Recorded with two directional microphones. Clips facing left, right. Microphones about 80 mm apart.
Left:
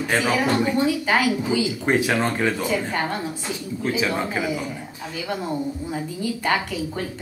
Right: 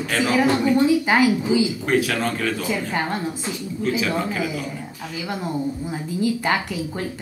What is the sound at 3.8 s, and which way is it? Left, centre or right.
Speech, left.